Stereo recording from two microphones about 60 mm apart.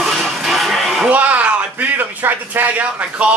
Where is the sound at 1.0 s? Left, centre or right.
Right.